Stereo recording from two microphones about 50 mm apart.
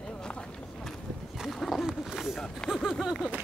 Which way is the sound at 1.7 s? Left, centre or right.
Centre.